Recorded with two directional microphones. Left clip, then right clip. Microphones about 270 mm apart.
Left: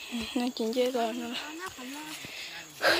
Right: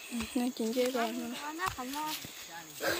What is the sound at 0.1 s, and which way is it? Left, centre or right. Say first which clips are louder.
Speech: left 2 dB; centre.